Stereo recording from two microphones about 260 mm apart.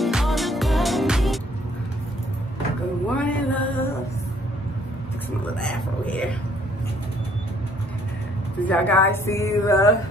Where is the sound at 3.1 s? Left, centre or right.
Centre.